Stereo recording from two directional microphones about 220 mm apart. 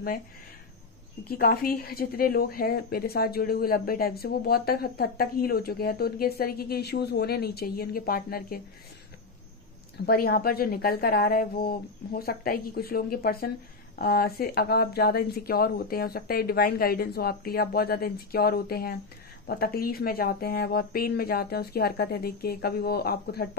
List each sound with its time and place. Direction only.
1.3 s a woman's voice: 40° left (ahead or behind)
10.0 s a woman's voice: 40° left (ahead or behind)